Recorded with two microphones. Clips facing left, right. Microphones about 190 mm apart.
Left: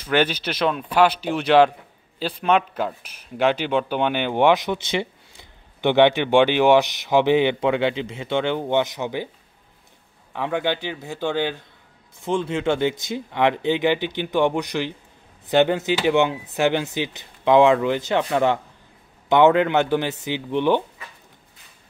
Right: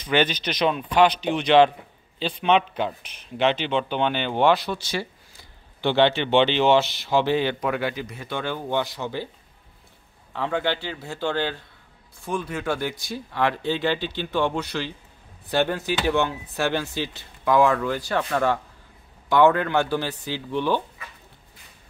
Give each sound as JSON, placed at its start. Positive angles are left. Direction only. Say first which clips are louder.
{"t": 0.1, "sound": "speech", "louder": "left 2 dB", "side_deg": 10}
{"t": 10.3, "sound": "speech", "louder": "left 2 dB", "side_deg": 15}